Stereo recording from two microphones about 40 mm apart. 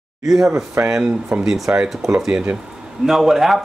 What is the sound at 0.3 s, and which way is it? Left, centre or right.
Speech, centre.